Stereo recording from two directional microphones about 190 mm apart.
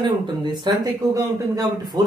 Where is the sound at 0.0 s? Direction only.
25° right (ahead or behind).